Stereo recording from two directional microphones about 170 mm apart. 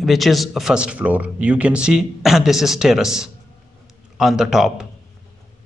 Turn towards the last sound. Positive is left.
turn(degrees=0)  # may be behind; listen again after turning